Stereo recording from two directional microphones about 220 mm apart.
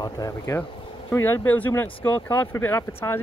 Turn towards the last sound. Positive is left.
turn(degrees=10)  # may be behind; listen again after turning